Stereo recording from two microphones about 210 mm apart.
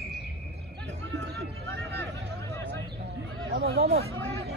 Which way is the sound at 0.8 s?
55° right (ahead or behind).